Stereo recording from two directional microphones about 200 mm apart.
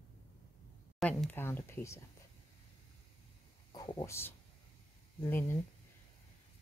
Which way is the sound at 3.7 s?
20° left (ahead or behind).